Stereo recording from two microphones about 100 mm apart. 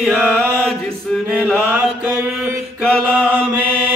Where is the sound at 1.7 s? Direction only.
20° right (ahead or behind).